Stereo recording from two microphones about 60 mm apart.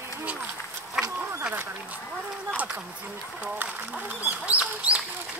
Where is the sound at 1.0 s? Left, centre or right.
Centre.